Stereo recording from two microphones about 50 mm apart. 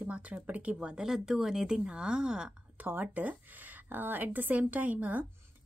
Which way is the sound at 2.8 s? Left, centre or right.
Right.